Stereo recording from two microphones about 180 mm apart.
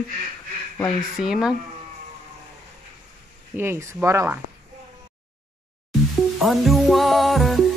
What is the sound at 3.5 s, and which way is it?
Speech, 15° right (ahead or behind).